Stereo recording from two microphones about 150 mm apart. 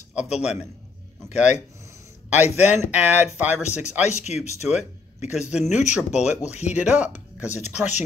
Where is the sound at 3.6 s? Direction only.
50° left (ahead or behind).